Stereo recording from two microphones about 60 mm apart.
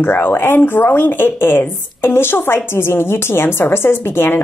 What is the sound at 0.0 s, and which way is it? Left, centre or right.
Speech, left.